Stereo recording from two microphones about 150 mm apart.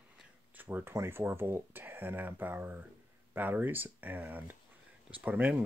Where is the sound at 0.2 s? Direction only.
10° right (ahead or behind).